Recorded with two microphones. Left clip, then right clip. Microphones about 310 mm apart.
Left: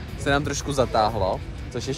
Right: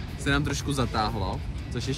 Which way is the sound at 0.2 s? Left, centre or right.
Centre.